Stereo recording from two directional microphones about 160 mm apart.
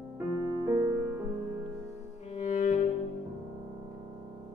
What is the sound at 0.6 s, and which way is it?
Music, 20° right (ahead or behind).